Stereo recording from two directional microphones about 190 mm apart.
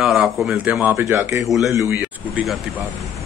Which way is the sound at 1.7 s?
15° right (ahead or behind).